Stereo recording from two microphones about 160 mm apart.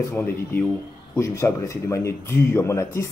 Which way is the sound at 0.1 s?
15° left (ahead or behind).